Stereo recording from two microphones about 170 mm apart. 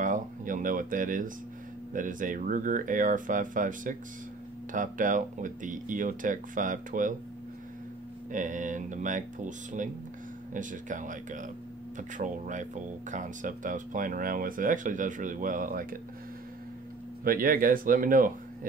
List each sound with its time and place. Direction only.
0.0 s speech: 50° right (ahead or behind)
8.3 s speech: 50° right (ahead or behind)
17.2 s speech: 55° right (ahead or behind)